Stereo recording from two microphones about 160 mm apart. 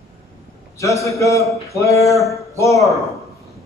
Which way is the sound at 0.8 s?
20° left (ahead or behind).